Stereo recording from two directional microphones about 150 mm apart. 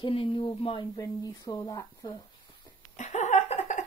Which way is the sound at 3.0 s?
50° left (ahead or behind).